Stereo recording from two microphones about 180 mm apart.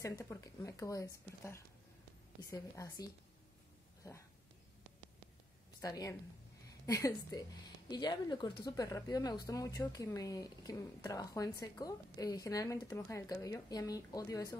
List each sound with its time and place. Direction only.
0.0 s speech: 15° left (ahead or behind)
5.8 s a woman's voice: 20° left (ahead or behind)